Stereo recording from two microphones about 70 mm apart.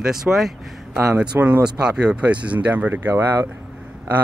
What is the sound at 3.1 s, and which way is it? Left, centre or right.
Speech, right.